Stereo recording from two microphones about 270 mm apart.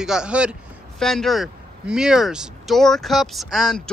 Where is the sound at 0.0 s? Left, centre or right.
Centre.